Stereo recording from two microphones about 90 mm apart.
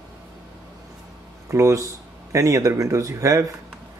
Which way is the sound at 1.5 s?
35° right (ahead or behind).